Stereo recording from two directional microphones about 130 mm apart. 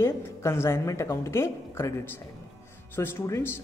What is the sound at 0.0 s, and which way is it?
Speech, 20° left (ahead or behind).